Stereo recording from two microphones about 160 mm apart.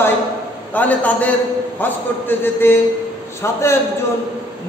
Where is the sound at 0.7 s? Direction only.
10° left (ahead or behind).